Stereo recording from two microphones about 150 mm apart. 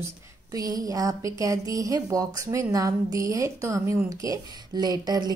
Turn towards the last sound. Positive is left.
turn(degrees=-25)  # may be behind; listen again after turning